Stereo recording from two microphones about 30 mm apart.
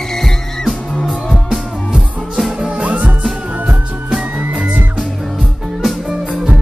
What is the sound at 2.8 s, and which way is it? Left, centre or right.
Music, right.